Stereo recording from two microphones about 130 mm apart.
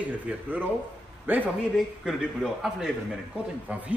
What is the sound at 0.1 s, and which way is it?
A man's voice, 10° right (ahead or behind).